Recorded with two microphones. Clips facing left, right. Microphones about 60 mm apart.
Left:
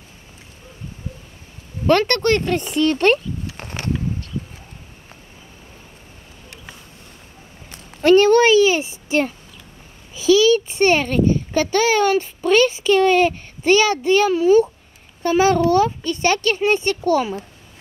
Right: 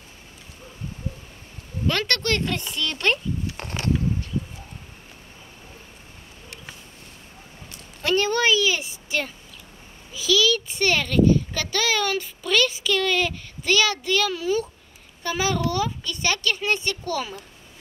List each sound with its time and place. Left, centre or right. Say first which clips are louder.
1.9 s speech: left 8 dB; left
8.0 s a child's voice: left 10 dB; left